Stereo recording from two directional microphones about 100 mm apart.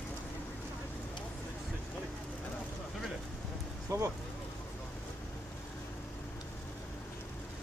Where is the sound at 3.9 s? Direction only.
30° right (ahead or behind).